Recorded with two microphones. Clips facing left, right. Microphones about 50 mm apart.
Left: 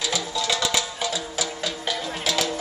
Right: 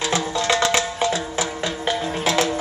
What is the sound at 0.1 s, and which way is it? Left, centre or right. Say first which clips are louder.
Music: right 7 dB; right.